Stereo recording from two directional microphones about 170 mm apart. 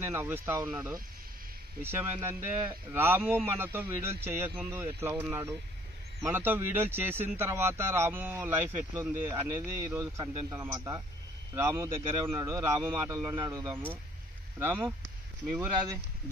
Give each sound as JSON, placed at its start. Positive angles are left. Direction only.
{"t": 0.0, "sound": "speech", "side_deg": -15}